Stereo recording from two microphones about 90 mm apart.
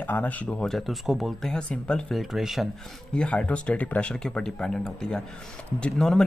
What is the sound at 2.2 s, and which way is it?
Speech, 5° right (ahead or behind).